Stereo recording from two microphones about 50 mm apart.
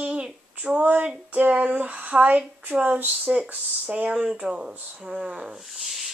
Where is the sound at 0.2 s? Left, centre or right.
Centre.